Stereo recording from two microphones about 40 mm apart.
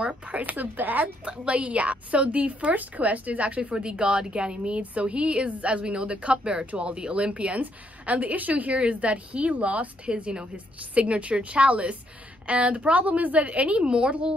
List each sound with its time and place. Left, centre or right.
0.0 s a woman's voice: right
0.4 s speech: right
1.2 s a woman's voice: right